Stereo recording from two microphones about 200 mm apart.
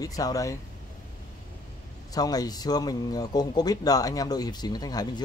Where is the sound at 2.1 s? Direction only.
20° left (ahead or behind).